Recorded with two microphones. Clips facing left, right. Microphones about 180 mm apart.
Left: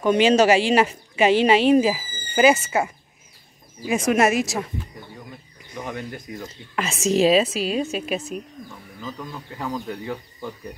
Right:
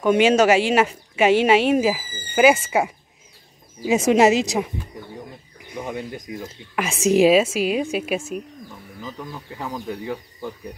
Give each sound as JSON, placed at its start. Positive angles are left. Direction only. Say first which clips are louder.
{"t": 0.0, "sound": "speech", "louder": "right 1 dB", "side_deg": -5}
{"t": 3.8, "sound": "speech", "louder": "right 4 dB", "side_deg": -25}
{"t": 5.7, "sound": "speech", "louder": "right 2 dB", "side_deg": -10}